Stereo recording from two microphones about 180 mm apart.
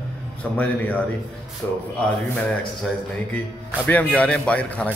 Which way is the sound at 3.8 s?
10° left (ahead or behind).